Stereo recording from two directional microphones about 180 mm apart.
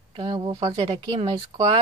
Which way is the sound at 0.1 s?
25° right (ahead or behind).